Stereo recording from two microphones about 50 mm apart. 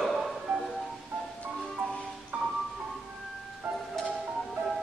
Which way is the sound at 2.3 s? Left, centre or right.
Right.